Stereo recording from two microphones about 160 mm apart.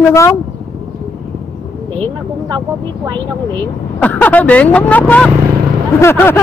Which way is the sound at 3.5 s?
10° left (ahead or behind).